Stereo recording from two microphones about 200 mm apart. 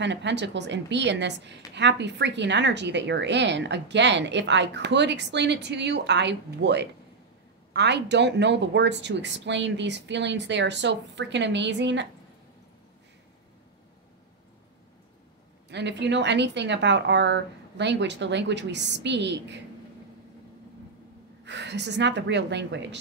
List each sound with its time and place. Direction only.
0.0 s a woman's voice: 60° right (ahead or behind)
15.7 s a woman's voice: 60° right (ahead or behind)
21.5 s a woman's voice: 60° right (ahead or behind)